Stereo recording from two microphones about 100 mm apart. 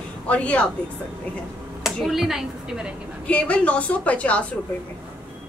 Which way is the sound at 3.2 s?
15° left (ahead or behind).